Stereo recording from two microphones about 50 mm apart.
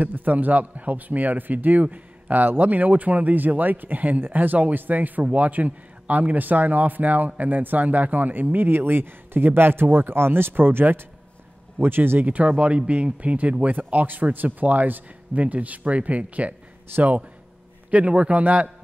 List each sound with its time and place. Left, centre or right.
0.0 s a man's voice: right
17.9 s speech: right